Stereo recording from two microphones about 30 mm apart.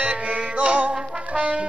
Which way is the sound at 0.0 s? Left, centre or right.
Right.